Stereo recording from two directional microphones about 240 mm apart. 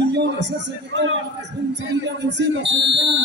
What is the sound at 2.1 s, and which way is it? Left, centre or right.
Speech, right.